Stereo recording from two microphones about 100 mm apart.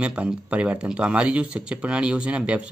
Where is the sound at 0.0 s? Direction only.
10° right (ahead or behind).